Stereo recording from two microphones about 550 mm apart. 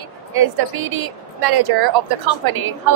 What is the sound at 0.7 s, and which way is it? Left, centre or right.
A woman's voice, right.